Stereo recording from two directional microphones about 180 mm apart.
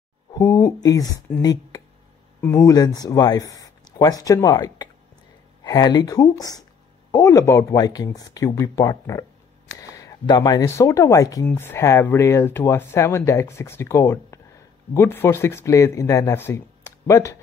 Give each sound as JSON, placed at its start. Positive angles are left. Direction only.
{"t": 0.3, "sound": "speech", "side_deg": 20}